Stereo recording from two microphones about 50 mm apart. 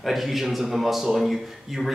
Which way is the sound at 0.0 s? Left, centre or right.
Centre.